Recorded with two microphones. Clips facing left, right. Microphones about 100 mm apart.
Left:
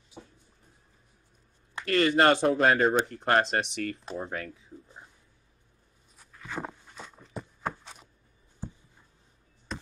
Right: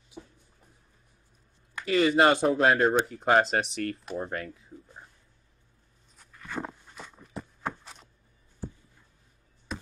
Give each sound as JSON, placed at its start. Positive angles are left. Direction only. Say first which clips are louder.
{"t": 1.9, "sound": "speech", "louder": "right 1 dB", "side_deg": -5}
{"t": 6.1, "sound": "walk", "louder": "right 1 dB", "side_deg": 0}
{"t": 8.6, "sound": "a sound", "louder": "right 2 dB", "side_deg": 20}
{"t": 9.7, "sound": "chop", "louder": "right 1 dB", "side_deg": -5}